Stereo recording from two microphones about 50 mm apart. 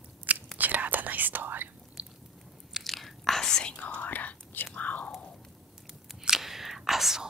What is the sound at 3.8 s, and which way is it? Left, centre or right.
Whispering, left.